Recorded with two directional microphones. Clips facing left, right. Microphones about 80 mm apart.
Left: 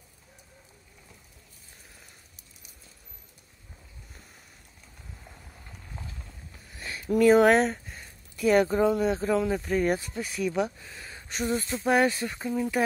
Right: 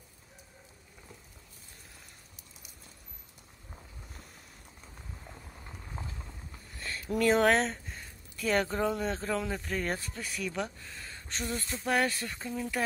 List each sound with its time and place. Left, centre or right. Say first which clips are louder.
5.7 s clip-clop: right 1 dB; right
6.8 s a sound: left 7 dB; centre
8.5 s speech: left 7 dB; centre